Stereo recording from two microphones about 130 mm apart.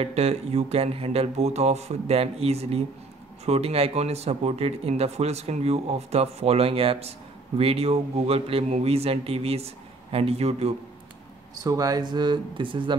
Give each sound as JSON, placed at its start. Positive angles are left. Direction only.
{"t": 0.0, "sound": "speech", "side_deg": -50}
{"t": 11.6, "sound": "speech", "side_deg": -30}